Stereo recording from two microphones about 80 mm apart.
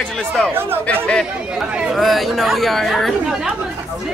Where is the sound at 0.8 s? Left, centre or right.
Centre.